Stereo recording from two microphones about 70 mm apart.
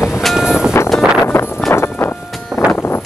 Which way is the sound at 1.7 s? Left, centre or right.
Left.